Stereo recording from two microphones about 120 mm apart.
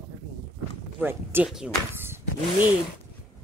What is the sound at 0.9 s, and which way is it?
Speech, 15° right (ahead or behind).